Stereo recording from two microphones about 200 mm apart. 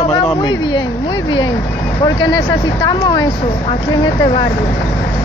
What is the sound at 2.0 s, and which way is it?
Speech, 20° left (ahead or behind).